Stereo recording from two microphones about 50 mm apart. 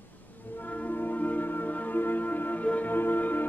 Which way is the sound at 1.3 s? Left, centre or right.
Left.